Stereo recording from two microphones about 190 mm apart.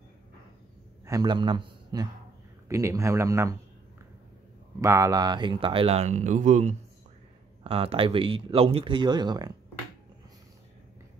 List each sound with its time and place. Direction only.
1.0 s a man's voice: 20° right (ahead or behind)
4.8 s speech: 15° right (ahead or behind); by 6.7 s 40° right (ahead or behind)
7.6 s speech: 30° right (ahead or behind)